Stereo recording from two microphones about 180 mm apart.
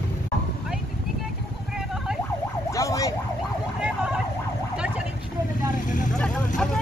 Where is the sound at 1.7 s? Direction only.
Centre (ahead or behind).